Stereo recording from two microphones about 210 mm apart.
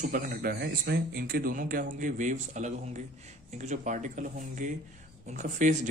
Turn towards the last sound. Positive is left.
turn(degrees=-35)  # may be behind; listen again after turning